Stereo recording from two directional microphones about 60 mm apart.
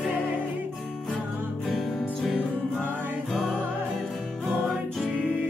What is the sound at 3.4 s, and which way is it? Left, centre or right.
Music, centre.